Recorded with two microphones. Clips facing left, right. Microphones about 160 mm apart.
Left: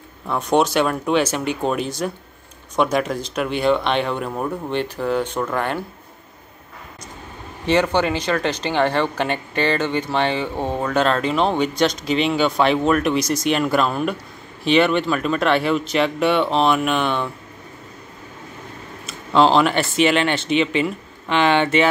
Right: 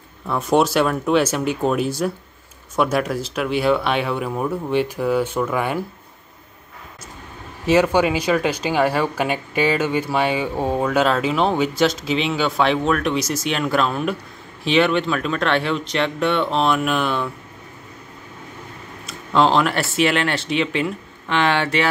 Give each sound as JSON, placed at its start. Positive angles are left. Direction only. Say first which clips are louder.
{"t": 0.3, "sound": "speech", "louder": "right 1 dB", "side_deg": 0}
{"t": 7.6, "sound": "speech", "louder": "right 2 dB", "side_deg": -5}
{"t": 19.0, "sound": "speech", "louder": "left 2 dB", "side_deg": 0}